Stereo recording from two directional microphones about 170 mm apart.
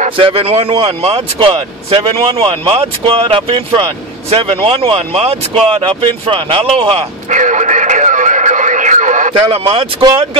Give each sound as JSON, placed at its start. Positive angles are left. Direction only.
{"t": 0.2, "sound": "speech", "side_deg": -35}
{"t": 7.2, "sound": "radio", "side_deg": -45}
{"t": 9.5, "sound": "speech", "side_deg": -35}